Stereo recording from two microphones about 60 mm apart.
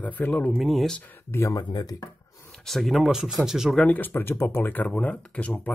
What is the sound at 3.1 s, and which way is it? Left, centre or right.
Speech, centre.